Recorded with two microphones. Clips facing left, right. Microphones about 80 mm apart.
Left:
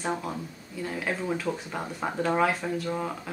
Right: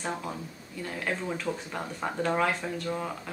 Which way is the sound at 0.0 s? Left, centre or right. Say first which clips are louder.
Left 3 dB; centre.